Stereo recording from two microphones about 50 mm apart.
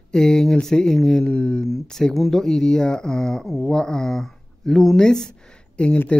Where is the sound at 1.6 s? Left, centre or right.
Centre.